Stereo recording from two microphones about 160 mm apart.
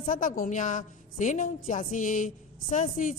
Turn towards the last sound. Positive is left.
turn(degrees=50)  # may be behind; listen again after turning